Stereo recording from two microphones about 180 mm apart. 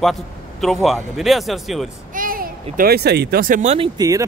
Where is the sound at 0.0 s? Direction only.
Centre (ahead or behind).